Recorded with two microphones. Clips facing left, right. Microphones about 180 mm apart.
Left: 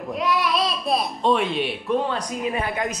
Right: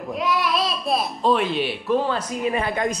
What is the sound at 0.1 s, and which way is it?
Speech, centre (ahead or behind).